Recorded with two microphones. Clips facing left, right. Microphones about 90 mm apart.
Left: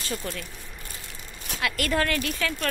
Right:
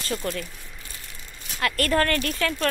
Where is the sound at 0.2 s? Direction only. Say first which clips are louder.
Right 5 dB; 5° left (ahead or behind).